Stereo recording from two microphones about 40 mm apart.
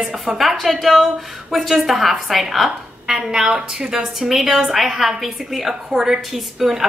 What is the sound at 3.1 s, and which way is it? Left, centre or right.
A woman's voice, centre.